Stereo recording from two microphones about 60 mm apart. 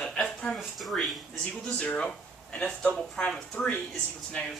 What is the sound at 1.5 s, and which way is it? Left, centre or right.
Speech, centre.